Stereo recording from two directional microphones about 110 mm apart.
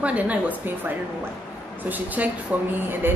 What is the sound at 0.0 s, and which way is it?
A woman's voice, 10° right (ahead or behind).